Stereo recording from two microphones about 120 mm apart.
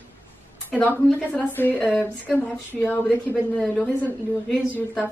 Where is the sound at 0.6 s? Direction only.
15° left (ahead or behind).